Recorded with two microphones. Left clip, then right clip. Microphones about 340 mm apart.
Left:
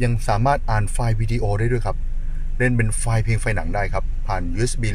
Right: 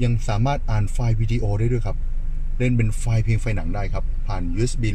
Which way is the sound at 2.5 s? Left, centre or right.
Left.